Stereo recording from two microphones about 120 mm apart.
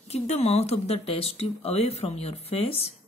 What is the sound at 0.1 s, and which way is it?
Speech, 65° left (ahead or behind).